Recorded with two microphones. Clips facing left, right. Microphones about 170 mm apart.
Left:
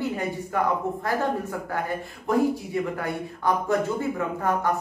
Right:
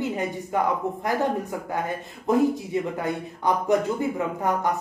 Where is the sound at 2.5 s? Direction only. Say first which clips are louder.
Right 1 dB; 20° right (ahead or behind).